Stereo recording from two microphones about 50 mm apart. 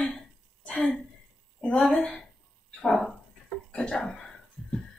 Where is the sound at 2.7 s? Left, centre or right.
Centre.